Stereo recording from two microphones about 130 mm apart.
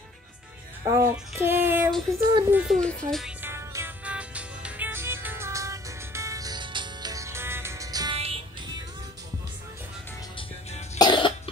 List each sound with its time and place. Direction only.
0.8 s music: 25° right (ahead or behind)
1.3 s child singing: 15° right (ahead or behind)
1.9 s a sound: centre (ahead or behind)
2.5 s speech: 5° right (ahead or behind)
3.4 s music: 20° right (ahead or behind)
8.1 s music: 50° right (ahead or behind)
11.0 s cough: 40° left (ahead or behind)